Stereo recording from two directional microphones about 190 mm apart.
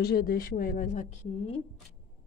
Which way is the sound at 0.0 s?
55° left (ahead or behind).